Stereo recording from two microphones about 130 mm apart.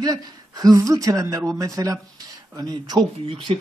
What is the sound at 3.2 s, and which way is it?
Speech, 45° right (ahead or behind).